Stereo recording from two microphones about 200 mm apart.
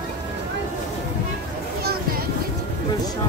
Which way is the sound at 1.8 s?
50° right (ahead or behind).